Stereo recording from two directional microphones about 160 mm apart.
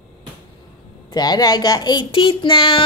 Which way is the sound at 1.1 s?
25° left (ahead or behind).